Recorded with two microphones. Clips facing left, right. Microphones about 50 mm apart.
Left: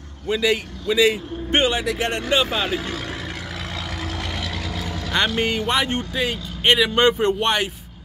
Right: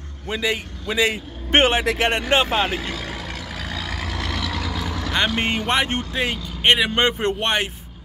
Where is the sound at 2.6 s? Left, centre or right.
Centre.